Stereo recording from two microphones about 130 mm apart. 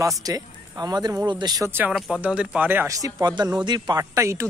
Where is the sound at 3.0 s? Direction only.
35° right (ahead or behind).